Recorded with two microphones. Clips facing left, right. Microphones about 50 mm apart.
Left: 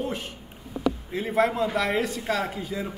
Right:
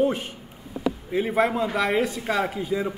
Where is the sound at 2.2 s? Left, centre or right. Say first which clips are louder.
Right 3 dB; right.